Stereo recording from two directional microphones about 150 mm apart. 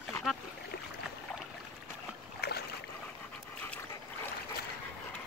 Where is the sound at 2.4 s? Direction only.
90° left.